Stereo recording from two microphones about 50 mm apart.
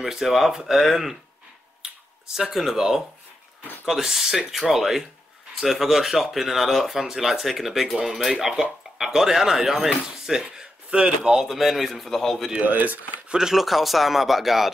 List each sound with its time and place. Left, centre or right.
0.0 s speech: centre
2.3 s speech: centre
11.3 s speech: centre
12.5 s speech: right
13.3 s speech: centre